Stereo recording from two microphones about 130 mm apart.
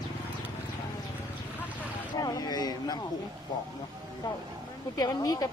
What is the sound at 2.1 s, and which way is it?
Speech, 30° left (ahead or behind).